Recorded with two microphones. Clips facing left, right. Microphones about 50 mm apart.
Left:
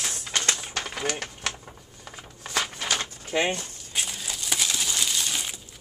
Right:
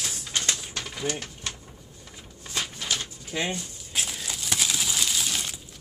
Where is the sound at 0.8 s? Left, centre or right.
Left.